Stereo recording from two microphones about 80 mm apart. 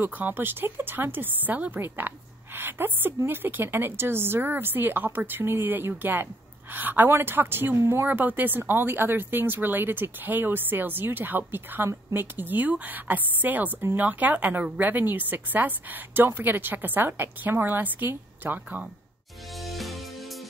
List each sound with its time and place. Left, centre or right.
0.0 s speech: right
19.6 s music: centre